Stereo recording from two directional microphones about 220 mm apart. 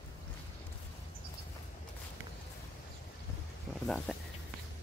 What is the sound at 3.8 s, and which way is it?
Speech, centre (ahead or behind).